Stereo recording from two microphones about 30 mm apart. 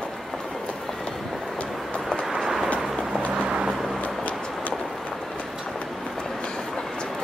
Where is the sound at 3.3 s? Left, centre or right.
Right.